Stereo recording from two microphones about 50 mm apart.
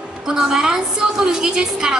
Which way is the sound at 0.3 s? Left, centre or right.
Centre.